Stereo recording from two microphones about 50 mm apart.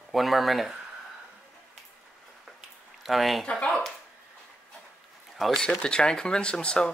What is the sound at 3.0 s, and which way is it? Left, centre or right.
Speech, centre.